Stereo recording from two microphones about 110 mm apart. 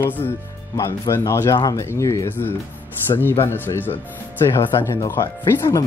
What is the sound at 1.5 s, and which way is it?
Speech, 35° left (ahead or behind).